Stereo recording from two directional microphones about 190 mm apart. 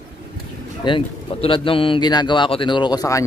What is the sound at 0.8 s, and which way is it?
A man's voice, 25° left (ahead or behind).